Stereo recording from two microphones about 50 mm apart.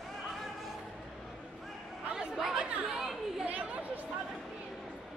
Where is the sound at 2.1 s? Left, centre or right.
Centre.